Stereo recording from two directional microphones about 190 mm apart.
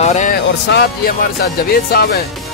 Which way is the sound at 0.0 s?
40° left (ahead or behind).